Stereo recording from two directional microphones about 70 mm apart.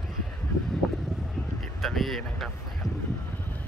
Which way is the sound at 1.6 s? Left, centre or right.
Centre.